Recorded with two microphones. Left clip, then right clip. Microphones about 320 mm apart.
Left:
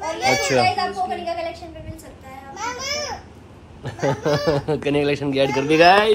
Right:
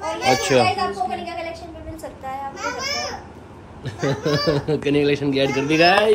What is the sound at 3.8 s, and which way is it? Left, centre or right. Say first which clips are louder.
Speech: left 2 dB; centre.